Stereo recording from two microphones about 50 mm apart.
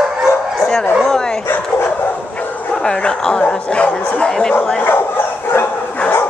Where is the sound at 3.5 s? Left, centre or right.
Centre.